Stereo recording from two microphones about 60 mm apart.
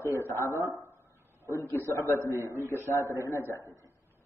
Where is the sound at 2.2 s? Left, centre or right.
Right.